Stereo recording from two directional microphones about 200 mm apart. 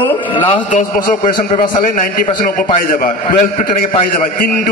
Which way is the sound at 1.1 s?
40° left (ahead or behind).